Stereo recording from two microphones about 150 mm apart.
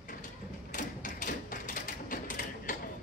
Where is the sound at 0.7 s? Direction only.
65° left (ahead or behind).